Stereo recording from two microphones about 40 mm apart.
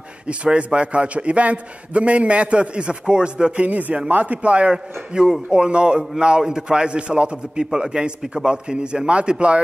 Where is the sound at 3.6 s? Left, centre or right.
Right.